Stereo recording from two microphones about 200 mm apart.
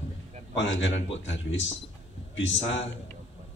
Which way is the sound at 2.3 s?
65° left (ahead or behind).